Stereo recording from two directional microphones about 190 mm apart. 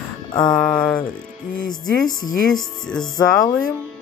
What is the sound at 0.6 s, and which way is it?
Speech, 5° left (ahead or behind).